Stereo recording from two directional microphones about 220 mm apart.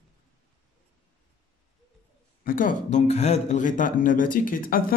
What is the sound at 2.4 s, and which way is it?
Speech, 40° left (ahead or behind).